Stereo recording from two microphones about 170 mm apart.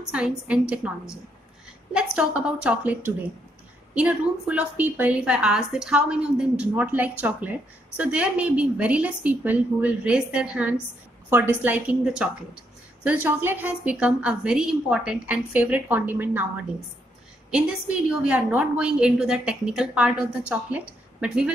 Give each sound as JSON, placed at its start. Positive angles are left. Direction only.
{"t": 0.5, "sound": "a woman's voice", "side_deg": -5}
{"t": 17.5, "sound": "a woman's voice", "side_deg": -5}